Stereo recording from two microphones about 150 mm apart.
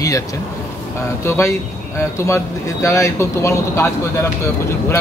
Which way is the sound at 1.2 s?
20° left (ahead or behind).